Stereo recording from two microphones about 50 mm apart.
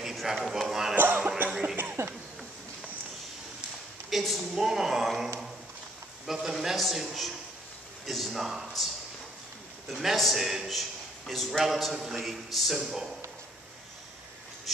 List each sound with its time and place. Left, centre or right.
0.0 s a sound: centre
0.4 s speech: centre
0.9 s music: right
2.0 s a sound: right
4.1 s a man's voice: centre
9.8 s a man's voice: centre